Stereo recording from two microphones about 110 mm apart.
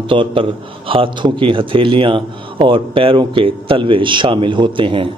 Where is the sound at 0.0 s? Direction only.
50° right (ahead or behind).